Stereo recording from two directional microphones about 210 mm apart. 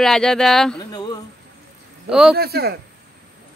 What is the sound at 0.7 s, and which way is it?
Speech, 20° left (ahead or behind).